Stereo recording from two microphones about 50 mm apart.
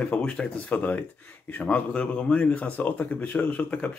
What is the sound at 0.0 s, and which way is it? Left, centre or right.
Speech, left.